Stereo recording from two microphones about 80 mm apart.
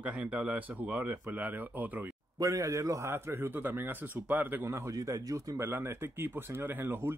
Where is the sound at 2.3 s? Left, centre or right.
Right.